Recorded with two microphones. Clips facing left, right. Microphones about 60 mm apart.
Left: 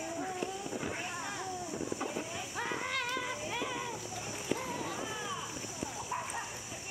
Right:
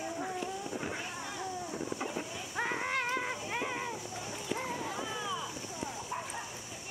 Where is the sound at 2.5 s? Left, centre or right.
Right.